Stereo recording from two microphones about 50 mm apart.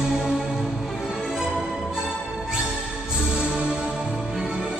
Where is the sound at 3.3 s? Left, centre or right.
Centre.